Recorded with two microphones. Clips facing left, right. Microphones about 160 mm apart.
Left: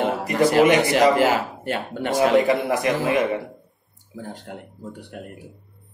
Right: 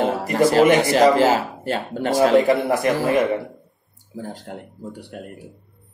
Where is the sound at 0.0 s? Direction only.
35° right (ahead or behind).